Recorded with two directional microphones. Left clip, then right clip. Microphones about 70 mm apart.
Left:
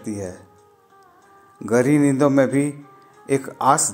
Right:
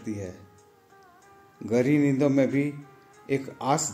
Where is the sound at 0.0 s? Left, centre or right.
Left.